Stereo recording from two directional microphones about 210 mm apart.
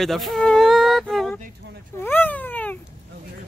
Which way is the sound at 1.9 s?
10° left (ahead or behind).